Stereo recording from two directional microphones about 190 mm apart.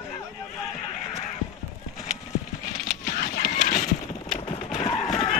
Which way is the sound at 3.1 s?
50° left (ahead or behind).